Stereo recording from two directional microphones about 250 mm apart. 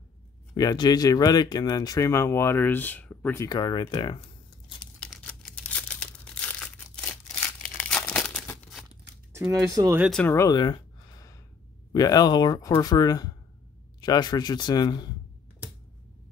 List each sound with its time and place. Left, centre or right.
0.6 s speech: centre
5.0 s crumpling: centre
9.3 s speech: centre
10.0 s speech: centre